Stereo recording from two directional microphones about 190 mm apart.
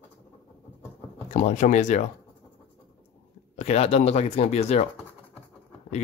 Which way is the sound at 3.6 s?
35° left (ahead or behind).